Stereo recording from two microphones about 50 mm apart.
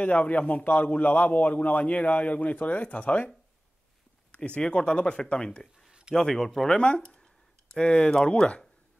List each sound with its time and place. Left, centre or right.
0.0 s speech: left
4.6 s speech: centre
5.9 s a sound: centre
6.1 s speech: centre
7.0 s a sound: centre
7.7 s speech: centre